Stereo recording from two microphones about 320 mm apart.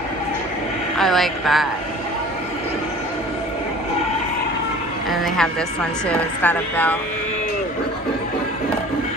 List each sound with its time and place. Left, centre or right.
0.9 s a woman's voice: centre
5.2 s a woman's voice: centre